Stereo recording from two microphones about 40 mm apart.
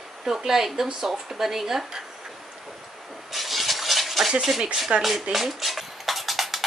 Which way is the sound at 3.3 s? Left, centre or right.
Centre.